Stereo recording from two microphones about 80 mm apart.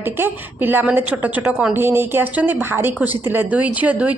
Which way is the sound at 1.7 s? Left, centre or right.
Right.